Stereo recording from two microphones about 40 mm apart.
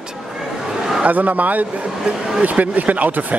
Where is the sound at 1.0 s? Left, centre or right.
Right.